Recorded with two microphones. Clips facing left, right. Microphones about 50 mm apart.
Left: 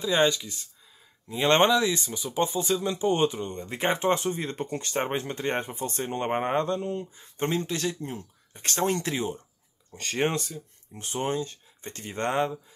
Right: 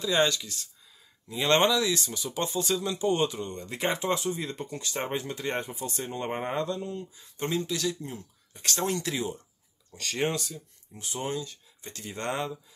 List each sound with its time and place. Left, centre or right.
0.0 s speech: left
1.3 s speech: left